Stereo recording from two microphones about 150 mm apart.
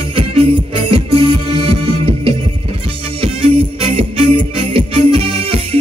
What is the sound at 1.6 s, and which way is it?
Music, 40° right (ahead or behind).